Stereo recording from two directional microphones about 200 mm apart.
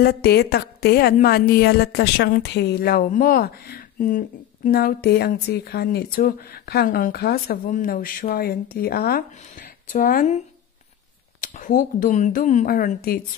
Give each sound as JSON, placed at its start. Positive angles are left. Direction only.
{"t": 0.0, "sound": "a woman's voice", "side_deg": 55}
{"t": 11.4, "sound": "speech", "side_deg": 40}